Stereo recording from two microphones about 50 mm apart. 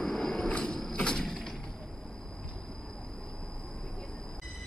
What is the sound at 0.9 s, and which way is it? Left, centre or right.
Sliding door, centre.